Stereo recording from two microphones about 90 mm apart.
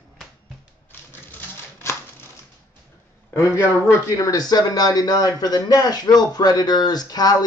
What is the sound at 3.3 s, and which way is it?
A man's voice, 35° left (ahead or behind).